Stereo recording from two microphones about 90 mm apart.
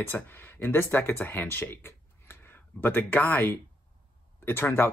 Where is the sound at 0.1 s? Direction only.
25° left (ahead or behind).